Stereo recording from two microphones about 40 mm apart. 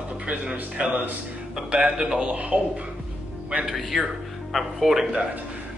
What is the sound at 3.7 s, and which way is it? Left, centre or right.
Speech, centre.